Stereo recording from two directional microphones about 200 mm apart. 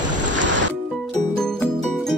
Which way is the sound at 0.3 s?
65° right (ahead or behind).